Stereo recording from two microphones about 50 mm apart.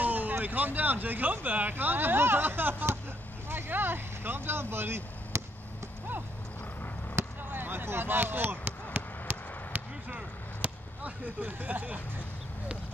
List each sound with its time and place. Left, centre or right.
0.0 s speech: right
7.2 s basketball bounce: right
7.5 s basketball bounce: right